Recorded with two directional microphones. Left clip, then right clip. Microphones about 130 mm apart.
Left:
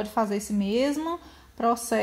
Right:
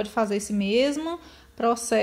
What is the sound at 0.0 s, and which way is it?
Speech, 20° right (ahead or behind).